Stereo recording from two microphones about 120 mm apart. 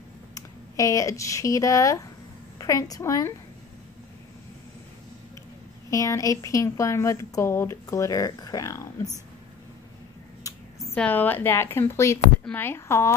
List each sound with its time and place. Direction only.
0.3 s speech: 25° left (ahead or behind)
5.9 s speech: 25° left (ahead or behind)
11.0 s a woman's voice: 15° left (ahead or behind)